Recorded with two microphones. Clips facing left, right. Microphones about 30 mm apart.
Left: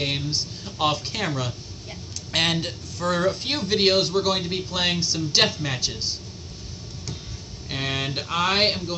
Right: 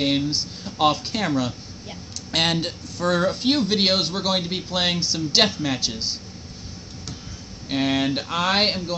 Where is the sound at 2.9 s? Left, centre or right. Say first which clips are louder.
Right 2 dB; right.